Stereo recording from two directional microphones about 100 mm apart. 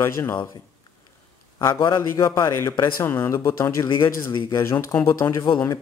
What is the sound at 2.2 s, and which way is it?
Speech, 45° left (ahead or behind).